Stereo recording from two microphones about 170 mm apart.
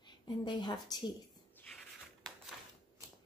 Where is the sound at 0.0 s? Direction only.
25° left (ahead or behind).